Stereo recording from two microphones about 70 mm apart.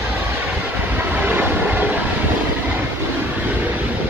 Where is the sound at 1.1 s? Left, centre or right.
Right.